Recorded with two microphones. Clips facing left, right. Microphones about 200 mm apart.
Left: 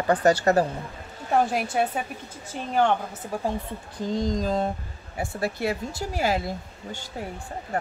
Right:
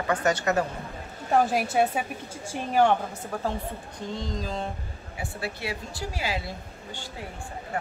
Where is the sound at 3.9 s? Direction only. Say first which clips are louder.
Left 9 dB; 40° left (ahead or behind).